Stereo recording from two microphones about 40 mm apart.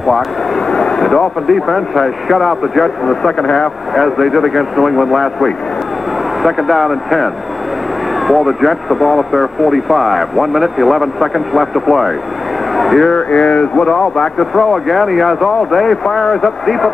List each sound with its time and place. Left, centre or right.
0.7 s speech: centre
3.9 s speech: centre
8.3 s speech: centre
12.7 s a sound: centre
13.1 s speech: left
14.4 s speech: centre